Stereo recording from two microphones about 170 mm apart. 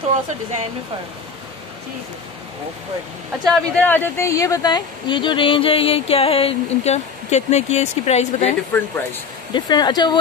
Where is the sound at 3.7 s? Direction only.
10° left (ahead or behind); by 8.2 s 40° left (ahead or behind).